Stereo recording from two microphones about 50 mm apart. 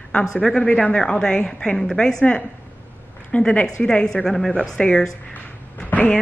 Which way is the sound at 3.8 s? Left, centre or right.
Centre.